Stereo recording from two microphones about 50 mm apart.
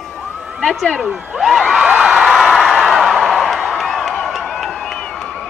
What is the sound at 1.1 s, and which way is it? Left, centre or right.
Speech, centre.